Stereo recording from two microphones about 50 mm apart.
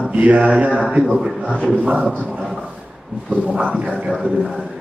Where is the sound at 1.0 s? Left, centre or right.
Centre.